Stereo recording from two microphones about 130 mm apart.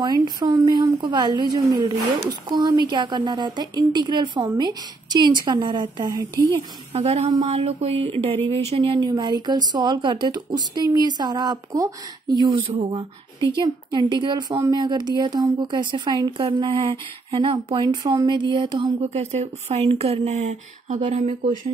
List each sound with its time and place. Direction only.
0.0 s speech: 35° right (ahead or behind)
6.4 s speech: 50° right (ahead or behind); by 16.3 s 30° right (ahead or behind)
16.3 s speech: 40° right (ahead or behind)
18.8 s speech: 55° right (ahead or behind); by 21.5 s 70° right (ahead or behind)